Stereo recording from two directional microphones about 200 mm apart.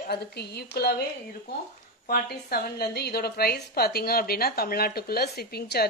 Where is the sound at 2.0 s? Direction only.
50° left (ahead or behind).